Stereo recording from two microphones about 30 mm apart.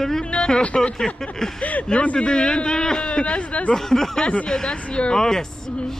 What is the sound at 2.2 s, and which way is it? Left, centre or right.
Speech, left.